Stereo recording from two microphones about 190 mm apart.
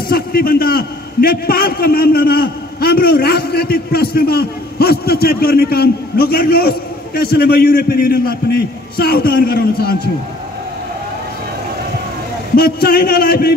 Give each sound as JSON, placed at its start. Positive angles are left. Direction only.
{"t": 0.1, "sound": "a man's voice", "side_deg": 50}
{"t": 12.5, "sound": "a man's voice", "side_deg": 55}